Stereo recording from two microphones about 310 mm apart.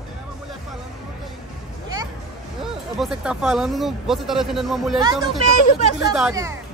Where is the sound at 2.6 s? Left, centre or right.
Centre.